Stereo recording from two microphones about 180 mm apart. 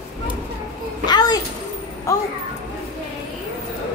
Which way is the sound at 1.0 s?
20° left (ahead or behind).